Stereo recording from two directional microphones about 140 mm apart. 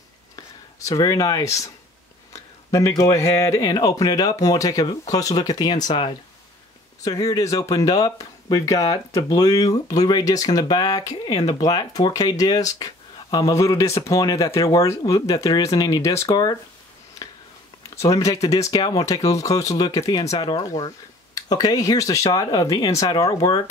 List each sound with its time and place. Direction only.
0.8 s speech: 25° left (ahead or behind)
17.8 s speech: 25° left (ahead or behind)